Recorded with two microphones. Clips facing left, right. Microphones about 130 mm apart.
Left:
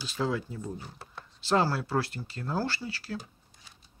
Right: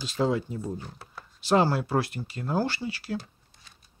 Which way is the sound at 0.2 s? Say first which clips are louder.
Right 5 dB; 20° right (ahead or behind).